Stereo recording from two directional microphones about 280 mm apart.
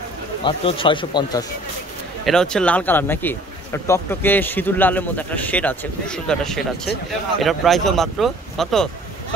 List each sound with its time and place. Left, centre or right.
0.4 s speech: centre
2.2 s speech: centre